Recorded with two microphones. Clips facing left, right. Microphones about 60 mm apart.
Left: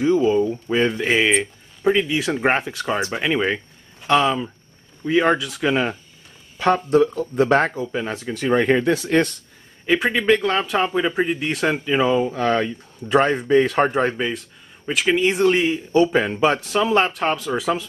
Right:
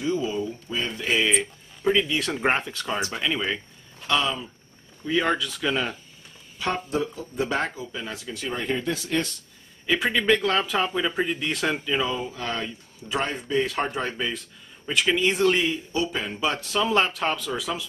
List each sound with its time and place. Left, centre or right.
0.0 s speech: left
1.8 s speech: centre
3.0 s speech: left
5.0 s speech: left
6.6 s speech: left
10.0 s speech: centre
12.0 s speech: left
14.9 s speech: centre
15.9 s speech: left
16.5 s speech: centre